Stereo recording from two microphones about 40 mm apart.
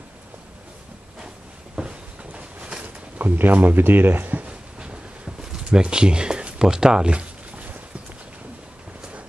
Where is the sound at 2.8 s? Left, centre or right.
Right.